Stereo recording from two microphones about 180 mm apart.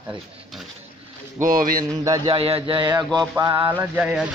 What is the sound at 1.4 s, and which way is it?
Speech, 50° right (ahead or behind).